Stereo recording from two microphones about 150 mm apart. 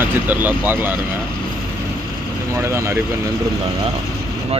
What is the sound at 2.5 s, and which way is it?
Speech, 20° right (ahead or behind).